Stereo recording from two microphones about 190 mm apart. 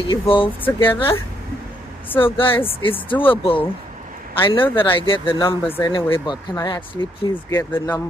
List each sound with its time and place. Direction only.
0.1 s speech: 25° left (ahead or behind)
2.1 s speech: 30° left (ahead or behind)
4.6 s speech: 10° left (ahead or behind)
4.9 s speech: 25° left (ahead or behind)